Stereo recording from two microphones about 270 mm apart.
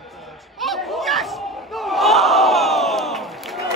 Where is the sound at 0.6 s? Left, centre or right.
Centre.